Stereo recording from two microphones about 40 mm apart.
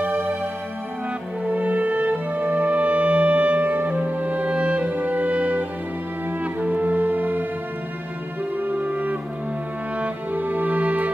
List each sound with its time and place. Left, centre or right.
1.4 s music: right
8.5 s music: right
10.3 s music: right